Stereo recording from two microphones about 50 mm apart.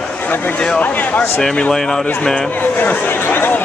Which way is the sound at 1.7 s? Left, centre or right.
Centre.